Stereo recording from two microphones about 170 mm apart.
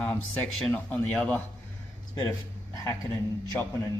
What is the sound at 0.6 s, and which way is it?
Speech, 10° left (ahead or behind).